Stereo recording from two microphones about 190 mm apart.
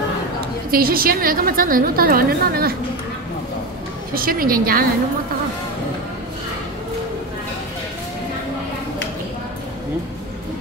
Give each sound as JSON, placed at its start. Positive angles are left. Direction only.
{"t": 0.7, "sound": "a woman's voice", "side_deg": -50}
{"t": 4.1, "sound": "a woman's voice", "side_deg": -50}